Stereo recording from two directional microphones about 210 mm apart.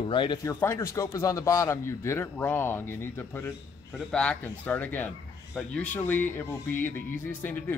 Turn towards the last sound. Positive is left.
turn(degrees=10)  # may be behind; listen again after turning